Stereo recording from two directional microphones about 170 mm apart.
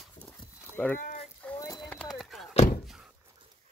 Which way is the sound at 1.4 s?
15° left (ahead or behind).